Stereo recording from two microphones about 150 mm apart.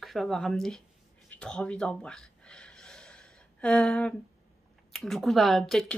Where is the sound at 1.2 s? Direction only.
5° left (ahead or behind).